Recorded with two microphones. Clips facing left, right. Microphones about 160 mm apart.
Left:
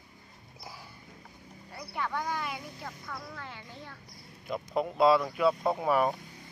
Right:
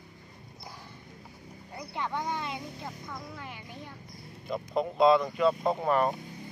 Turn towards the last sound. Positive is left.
turn(degrees=5)  # may be behind; listen again after turning